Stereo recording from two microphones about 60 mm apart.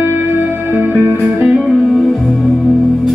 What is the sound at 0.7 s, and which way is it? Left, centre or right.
Music, right.